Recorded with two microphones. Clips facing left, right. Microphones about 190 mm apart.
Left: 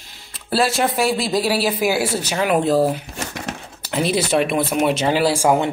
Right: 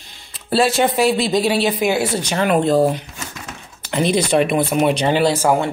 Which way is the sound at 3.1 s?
70° left (ahead or behind).